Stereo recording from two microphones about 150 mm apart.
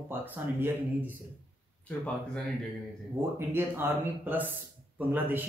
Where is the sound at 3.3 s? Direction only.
15° right (ahead or behind).